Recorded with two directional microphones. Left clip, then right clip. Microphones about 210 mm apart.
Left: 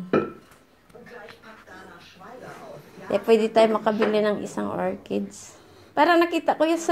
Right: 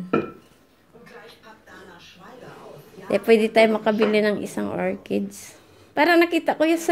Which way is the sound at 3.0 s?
30° right (ahead or behind).